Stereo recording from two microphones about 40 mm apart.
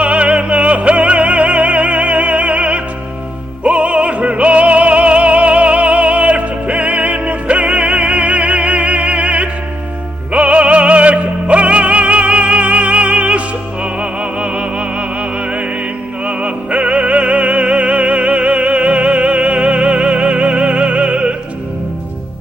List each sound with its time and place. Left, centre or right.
0.0 s music: right
3.6 s opera: right
10.3 s music: right